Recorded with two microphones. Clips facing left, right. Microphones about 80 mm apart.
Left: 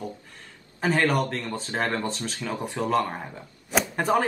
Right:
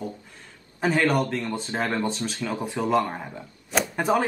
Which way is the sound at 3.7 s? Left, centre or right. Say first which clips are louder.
Even; centre.